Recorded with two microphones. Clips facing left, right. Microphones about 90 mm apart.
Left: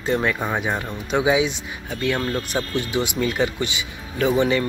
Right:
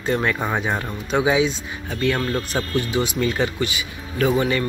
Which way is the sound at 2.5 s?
20° left (ahead or behind).